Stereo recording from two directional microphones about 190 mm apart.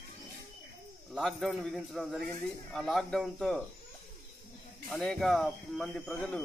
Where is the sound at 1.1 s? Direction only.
Centre (ahead or behind).